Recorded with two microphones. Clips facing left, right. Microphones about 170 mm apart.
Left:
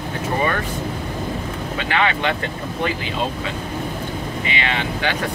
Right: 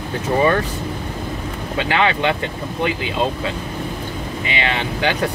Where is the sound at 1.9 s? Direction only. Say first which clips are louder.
Right 2 dB; 30° right (ahead or behind).